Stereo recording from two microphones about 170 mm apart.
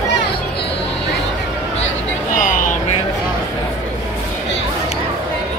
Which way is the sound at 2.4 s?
50° left (ahead or behind).